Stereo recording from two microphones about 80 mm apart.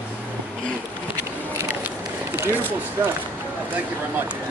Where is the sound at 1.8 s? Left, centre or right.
Right.